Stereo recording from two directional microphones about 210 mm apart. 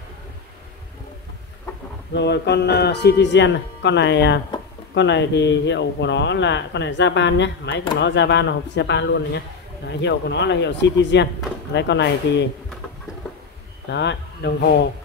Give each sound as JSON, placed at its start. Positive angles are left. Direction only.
{"t": 2.1, "sound": "speech", "side_deg": 55}
{"t": 13.8, "sound": "speech", "side_deg": 55}